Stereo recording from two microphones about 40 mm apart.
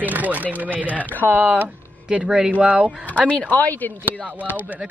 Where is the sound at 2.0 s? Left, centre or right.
Centre.